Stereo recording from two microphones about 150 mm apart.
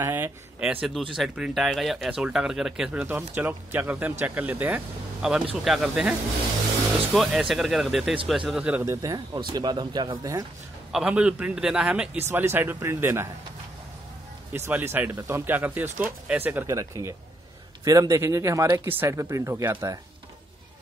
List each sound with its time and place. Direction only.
0.0 s speech: 15° right (ahead or behind)
8.8 s speech: 20° right (ahead or behind)
10.9 s speech: 5° right (ahead or behind)
14.7 s speech: 15° right (ahead or behind)